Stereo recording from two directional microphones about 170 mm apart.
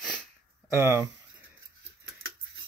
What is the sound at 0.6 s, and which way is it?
Speech, 15° right (ahead or behind).